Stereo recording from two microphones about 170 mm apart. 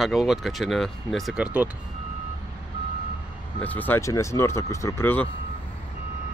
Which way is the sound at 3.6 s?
10° left (ahead or behind).